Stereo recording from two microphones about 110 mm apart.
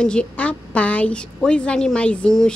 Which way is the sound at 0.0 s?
10° left (ahead or behind).